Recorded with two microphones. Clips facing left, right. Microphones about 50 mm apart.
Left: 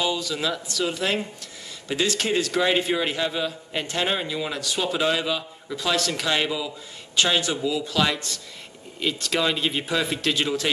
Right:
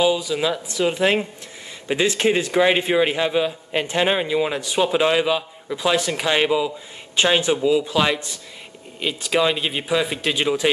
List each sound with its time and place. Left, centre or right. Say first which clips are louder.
0.0 s a man's voice: right 6 dB; centre